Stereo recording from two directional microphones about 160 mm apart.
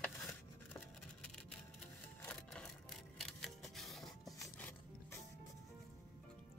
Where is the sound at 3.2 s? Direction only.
Centre (ahead or behind).